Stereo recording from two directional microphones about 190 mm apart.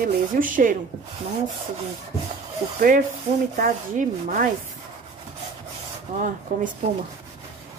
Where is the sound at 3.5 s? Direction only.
45° right (ahead or behind).